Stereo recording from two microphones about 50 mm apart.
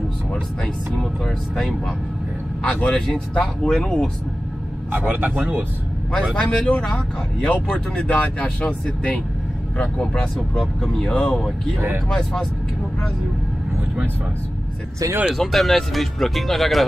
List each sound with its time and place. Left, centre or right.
2.6 s speech: left; by 4.1 s centre
4.9 s speech: right
6.3 s speech: centre
9.8 s speech: centre
11.1 s speech: centre
15.3 s speech: centre